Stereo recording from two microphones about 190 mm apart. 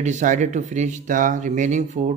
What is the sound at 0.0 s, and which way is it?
Speech, 40° right (ahead or behind).